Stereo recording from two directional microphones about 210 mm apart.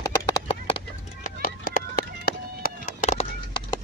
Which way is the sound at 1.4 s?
45° left (ahead or behind).